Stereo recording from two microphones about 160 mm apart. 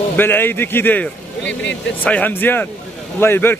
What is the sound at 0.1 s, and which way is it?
Speech, 15° left (ahead or behind).